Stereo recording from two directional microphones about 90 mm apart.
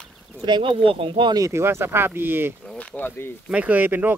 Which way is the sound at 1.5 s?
30° right (ahead or behind).